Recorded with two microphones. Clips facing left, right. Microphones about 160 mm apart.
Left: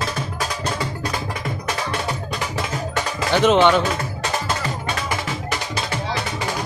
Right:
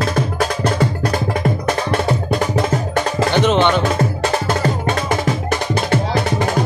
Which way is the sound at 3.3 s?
5° left (ahead or behind).